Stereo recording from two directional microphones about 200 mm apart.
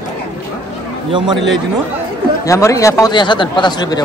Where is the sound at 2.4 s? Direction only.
15° left (ahead or behind).